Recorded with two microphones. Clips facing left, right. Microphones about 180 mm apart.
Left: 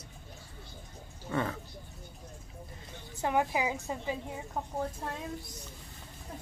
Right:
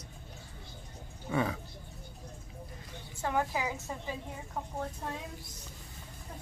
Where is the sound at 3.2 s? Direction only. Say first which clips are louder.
Left 3 dB; 15° left (ahead or behind).